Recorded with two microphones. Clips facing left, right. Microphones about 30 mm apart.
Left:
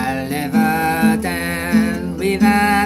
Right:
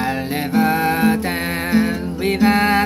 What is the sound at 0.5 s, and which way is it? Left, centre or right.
Music, centre.